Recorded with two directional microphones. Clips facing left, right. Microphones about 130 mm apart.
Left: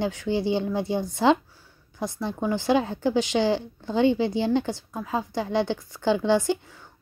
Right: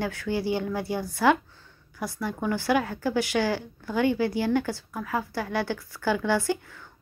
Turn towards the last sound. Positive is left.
turn(degrees=20)  # may be behind; listen again after turning